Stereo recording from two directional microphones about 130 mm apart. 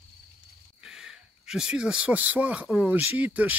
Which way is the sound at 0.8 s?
5° right (ahead or behind).